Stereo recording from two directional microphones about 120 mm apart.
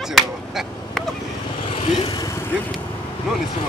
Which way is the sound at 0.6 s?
Centre (ahead or behind).